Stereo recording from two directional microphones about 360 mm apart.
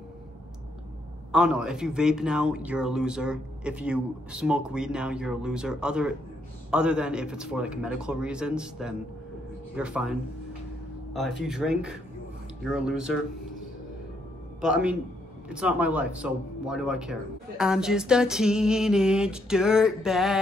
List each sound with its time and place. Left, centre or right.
1.3 s speech: centre
11.4 s speech: centre
14.6 s speech: centre